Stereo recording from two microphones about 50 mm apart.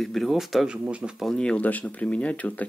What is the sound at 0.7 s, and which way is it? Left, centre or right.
Speech, right.